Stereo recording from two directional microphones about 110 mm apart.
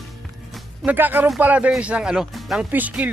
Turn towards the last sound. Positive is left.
turn(degrees=-15)  # may be behind; listen again after turning